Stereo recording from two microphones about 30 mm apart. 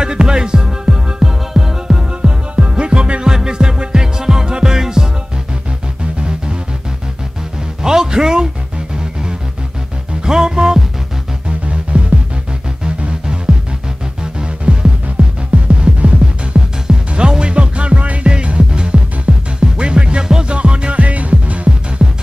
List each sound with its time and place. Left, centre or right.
0.0 s music: right
2.2 s music: right
3.3 s music: right
7.8 s music: right
11.7 s music: right
14.4 s music: right
16.5 s music: right
17.3 s music: right
18.7 s music: right
20.9 s music: right